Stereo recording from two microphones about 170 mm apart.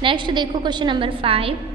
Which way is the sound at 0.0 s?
30° right (ahead or behind).